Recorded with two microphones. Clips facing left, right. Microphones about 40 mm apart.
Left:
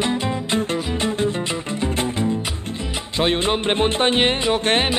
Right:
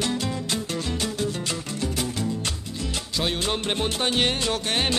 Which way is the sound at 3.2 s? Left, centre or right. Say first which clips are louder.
Left 7 dB; left.